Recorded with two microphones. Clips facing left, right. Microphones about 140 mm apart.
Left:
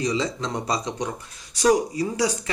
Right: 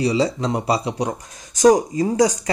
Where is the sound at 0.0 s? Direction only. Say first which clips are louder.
Right 6 dB; 35° right (ahead or behind).